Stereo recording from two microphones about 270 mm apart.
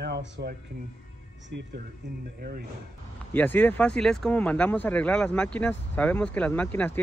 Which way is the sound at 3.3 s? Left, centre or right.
Centre.